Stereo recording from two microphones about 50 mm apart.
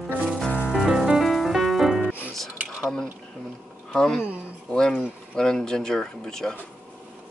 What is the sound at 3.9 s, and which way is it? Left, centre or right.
Speech, centre.